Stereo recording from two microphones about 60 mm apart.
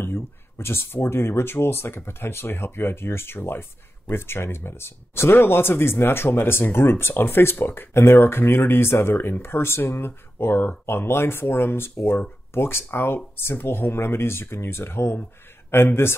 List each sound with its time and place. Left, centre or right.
0.0 s speech: left